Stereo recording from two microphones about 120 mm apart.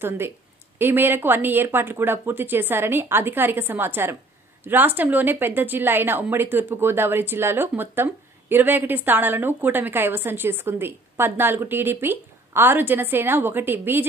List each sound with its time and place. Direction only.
0.7 s a woman's voice: 15° right (ahead or behind)